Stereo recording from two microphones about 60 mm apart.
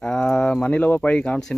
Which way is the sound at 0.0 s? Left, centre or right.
Centre.